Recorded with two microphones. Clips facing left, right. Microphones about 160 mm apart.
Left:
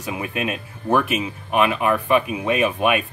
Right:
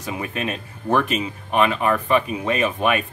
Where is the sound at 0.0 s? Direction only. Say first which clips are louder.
Left 1 dB; 10° left (ahead or behind).